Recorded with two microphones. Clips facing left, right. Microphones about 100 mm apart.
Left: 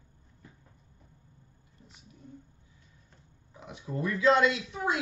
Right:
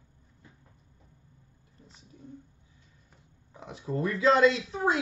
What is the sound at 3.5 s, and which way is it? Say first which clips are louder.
Speech: right 3 dB; 30° right (ahead or behind).